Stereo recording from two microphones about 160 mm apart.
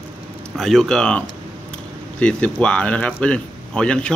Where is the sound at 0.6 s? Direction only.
Centre (ahead or behind).